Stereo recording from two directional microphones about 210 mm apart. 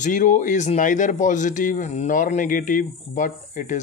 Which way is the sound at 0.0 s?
35° left (ahead or behind).